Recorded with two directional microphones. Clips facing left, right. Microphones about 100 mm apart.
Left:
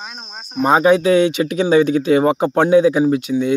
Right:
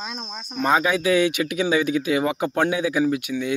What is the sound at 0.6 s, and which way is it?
Speech, 30° left (ahead or behind).